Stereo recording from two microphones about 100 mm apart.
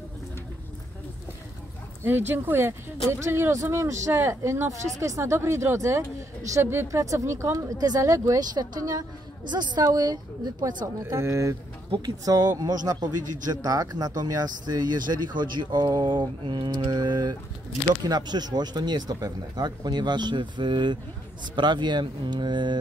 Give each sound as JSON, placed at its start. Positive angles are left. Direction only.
{"t": 2.0, "sound": "speech", "side_deg": -20}
{"t": 7.5, "sound": "a woman's voice", "side_deg": -40}
{"t": 11.0, "sound": "speech", "side_deg": -30}
{"t": 12.3, "sound": "speech", "side_deg": -40}